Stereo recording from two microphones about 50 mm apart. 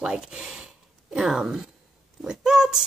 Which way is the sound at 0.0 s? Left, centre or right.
Centre.